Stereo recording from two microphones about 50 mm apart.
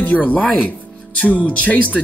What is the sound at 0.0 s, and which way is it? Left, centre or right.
Speech, left.